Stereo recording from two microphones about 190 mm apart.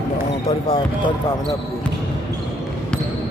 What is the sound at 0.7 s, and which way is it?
Speech, 25° left (ahead or behind).